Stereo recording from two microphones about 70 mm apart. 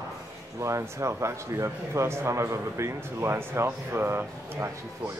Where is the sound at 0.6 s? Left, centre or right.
Right.